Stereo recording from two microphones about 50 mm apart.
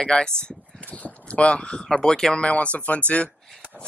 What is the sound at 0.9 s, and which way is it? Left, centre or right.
Speech, left.